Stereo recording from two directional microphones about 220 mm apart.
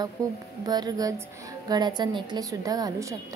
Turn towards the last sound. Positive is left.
turn(degrees=-15)  # may be behind; listen again after turning